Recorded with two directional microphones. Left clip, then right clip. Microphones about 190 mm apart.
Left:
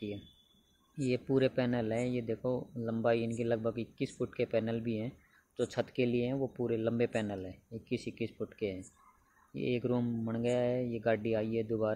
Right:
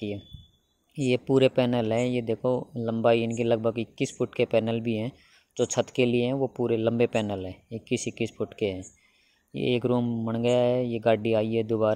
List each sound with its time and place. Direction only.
0.9 s speech: 35° right (ahead or behind)